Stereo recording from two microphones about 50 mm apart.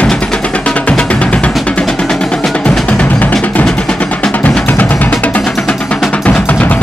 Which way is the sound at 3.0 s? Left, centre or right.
Left.